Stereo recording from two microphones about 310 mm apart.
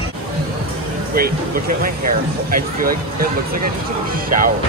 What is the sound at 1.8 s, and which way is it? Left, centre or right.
Speech, right.